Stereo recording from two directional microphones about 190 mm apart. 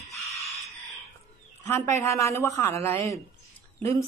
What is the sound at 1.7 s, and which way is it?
Speech, 15° left (ahead or behind).